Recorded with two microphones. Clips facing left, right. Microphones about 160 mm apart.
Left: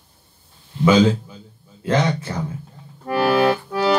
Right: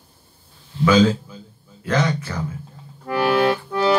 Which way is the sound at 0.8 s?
20° left (ahead or behind).